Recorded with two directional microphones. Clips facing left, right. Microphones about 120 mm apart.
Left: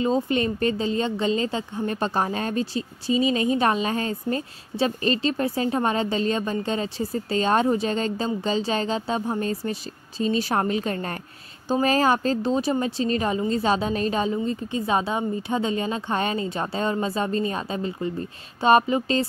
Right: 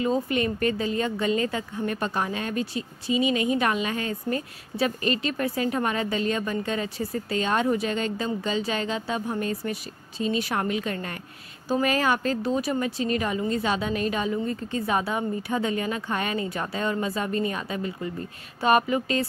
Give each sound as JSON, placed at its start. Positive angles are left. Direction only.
{"t": 0.0, "sound": "speech", "side_deg": 30}